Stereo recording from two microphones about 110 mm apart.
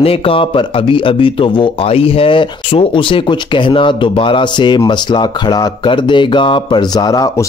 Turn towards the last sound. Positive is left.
turn(degrees=35)  # may be behind; listen again after turning